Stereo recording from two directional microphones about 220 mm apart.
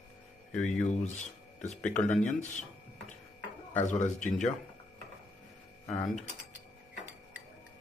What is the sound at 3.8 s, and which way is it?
Speech, 35° left (ahead or behind).